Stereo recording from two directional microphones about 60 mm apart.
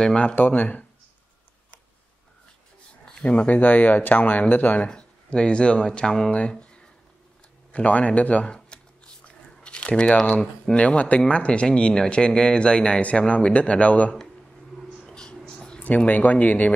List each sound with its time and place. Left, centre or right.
0.0 s speech: centre
3.1 s speech: centre
7.7 s speech: left
9.6 s speech: centre
10.4 s speech: centre
15.0 s a sound: centre
16.1 s speech: left